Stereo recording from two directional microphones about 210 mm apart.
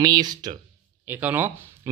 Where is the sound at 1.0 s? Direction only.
10° right (ahead or behind).